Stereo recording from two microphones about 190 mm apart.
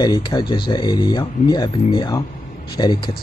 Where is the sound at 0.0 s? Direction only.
20° left (ahead or behind).